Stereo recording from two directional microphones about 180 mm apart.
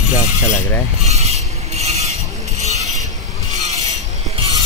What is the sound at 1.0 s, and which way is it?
Vehicle, 35° right (ahead or behind).